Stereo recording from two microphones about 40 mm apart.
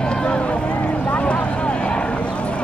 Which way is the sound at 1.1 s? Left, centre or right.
Left.